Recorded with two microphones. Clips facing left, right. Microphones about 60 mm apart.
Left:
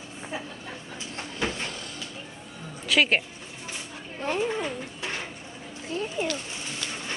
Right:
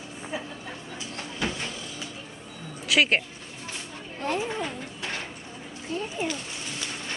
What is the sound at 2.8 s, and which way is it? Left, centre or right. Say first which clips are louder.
Speech: even; centre.